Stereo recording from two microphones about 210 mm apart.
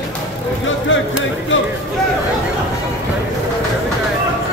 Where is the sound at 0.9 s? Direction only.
65° left (ahead or behind).